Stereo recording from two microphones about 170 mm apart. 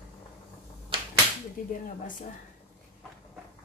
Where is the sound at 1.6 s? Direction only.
55° left (ahead or behind).